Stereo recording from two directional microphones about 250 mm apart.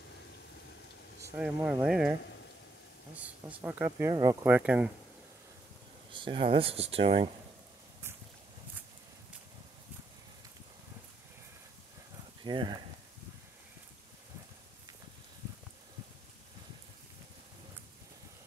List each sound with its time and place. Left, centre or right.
1.3 s speech: centre
3.2 s speech: centre
6.1 s speech: centre
12.4 s speech: centre